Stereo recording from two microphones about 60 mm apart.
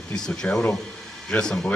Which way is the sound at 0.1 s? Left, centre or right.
Centre.